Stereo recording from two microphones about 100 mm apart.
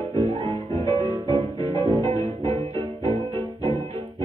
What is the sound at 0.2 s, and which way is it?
Music, 60° right (ahead or behind).